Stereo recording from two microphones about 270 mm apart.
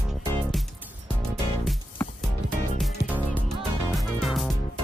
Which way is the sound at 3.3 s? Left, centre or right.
Centre.